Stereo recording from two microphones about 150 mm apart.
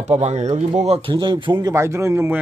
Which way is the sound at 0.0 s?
50° right (ahead or behind).